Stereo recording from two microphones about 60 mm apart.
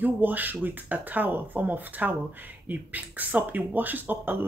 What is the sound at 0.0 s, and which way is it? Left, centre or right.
Speech, right.